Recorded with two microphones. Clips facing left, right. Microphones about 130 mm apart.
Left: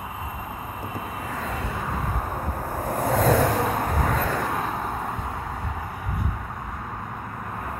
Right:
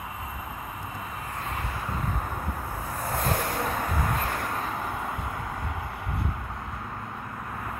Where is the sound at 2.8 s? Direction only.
60° left (ahead or behind).